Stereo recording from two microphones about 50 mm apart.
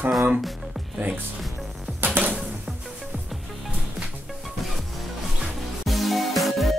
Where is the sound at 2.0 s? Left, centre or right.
Right.